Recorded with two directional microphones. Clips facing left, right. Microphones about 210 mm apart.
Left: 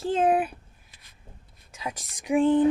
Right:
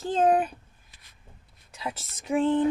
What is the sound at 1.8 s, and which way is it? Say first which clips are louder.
Speech: even; 15° left (ahead or behind).